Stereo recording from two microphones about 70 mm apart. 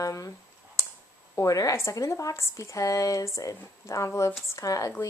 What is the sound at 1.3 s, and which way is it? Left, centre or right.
A woman's voice, left.